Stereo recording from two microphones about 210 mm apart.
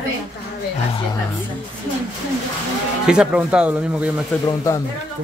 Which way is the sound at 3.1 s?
5° right (ahead or behind).